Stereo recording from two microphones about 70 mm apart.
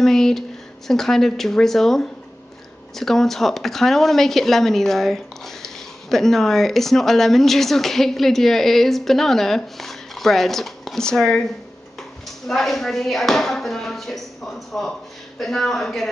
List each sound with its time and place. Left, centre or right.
0.0 s a sound: centre
0.8 s a woman's voice: centre
12.4 s a woman's voice: centre